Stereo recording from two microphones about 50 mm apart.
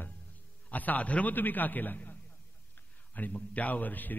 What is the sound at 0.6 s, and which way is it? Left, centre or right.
A man's voice, left.